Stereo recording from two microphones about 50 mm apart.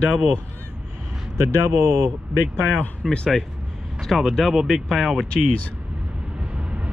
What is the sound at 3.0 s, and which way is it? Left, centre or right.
Speech, centre.